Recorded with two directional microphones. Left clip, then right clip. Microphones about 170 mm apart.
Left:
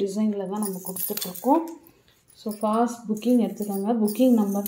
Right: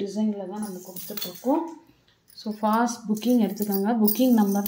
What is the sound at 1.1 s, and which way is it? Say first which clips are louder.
Speech: left 4 dB; 60° left (ahead or behind).